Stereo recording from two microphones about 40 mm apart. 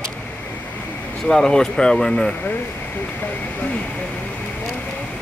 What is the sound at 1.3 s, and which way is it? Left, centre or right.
Speech, centre.